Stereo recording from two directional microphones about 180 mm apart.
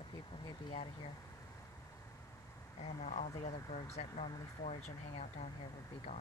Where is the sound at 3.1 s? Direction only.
40° left (ahead or behind).